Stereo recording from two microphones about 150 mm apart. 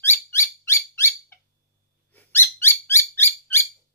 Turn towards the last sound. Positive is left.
turn(degrees=15)  # may be behind; listen again after turning